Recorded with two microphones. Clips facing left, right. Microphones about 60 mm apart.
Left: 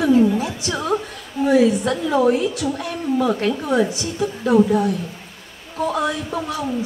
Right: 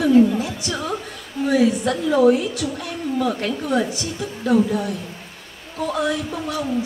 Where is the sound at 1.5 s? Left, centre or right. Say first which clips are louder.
Left 2 dB; left.